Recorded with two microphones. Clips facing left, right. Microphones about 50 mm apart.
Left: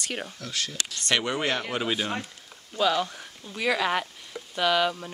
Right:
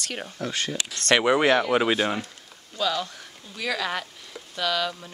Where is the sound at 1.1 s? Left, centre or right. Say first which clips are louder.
Right 7 dB; centre.